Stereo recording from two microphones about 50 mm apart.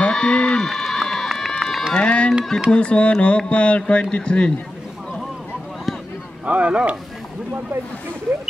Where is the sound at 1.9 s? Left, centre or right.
Left.